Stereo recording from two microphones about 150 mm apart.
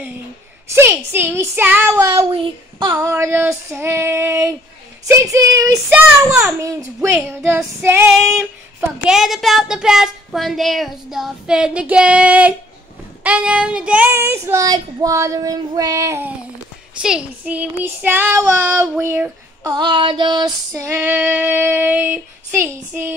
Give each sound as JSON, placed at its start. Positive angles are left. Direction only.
{"t": 0.7, "sound": "female singing", "side_deg": -15}
{"t": 2.1, "sound": "child singing", "side_deg": -30}
{"t": 6.6, "sound": "female singing", "side_deg": -20}
{"t": 8.1, "sound": "a woman's voice", "side_deg": 0}
{"t": 13.2, "sound": "child singing", "side_deg": -10}
{"t": 17.0, "sound": "female singing", "side_deg": -5}
{"t": 19.6, "sound": "female singing", "side_deg": -30}